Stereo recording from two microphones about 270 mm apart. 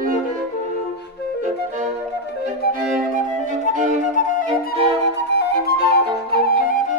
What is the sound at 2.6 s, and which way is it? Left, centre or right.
Music, left.